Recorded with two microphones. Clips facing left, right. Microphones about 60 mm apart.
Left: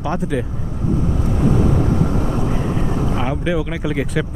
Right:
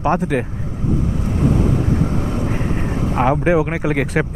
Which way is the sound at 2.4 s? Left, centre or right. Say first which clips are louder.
Left 1 dB; right.